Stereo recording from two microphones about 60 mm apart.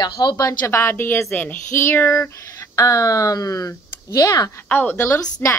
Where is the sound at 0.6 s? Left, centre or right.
Left.